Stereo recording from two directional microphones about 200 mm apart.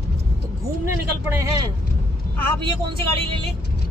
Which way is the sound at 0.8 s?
15° right (ahead or behind).